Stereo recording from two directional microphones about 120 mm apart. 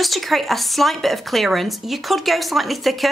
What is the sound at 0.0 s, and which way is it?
Speech, centre (ahead or behind).